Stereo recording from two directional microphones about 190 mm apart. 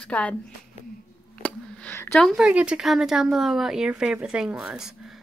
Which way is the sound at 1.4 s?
5° left (ahead or behind).